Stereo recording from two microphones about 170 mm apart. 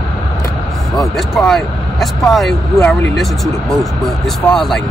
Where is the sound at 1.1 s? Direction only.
Centre (ahead or behind).